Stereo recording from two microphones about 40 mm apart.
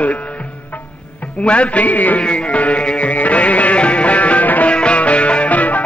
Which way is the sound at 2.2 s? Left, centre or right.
Left.